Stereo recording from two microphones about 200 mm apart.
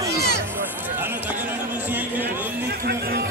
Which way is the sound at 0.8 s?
10° right (ahead or behind).